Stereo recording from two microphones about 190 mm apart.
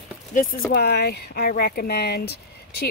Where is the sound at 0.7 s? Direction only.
55° left (ahead or behind).